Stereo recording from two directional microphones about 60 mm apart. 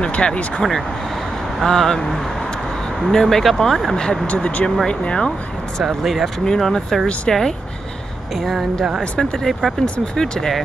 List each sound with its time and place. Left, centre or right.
0.0 s speech: centre
1.6 s speech: centre
4.3 s speech: left
5.8 s speech: centre
9.9 s speech: centre